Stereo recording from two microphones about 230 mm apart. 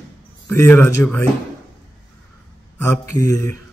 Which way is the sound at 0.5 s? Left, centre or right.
Centre.